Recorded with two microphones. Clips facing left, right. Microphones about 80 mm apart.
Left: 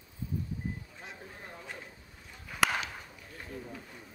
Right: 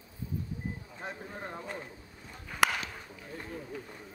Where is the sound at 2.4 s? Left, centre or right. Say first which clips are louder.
Right 2 dB; centre.